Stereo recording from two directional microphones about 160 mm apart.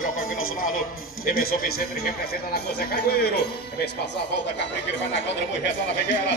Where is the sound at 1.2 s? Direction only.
70° left (ahead or behind); by 4.2 s 90° left.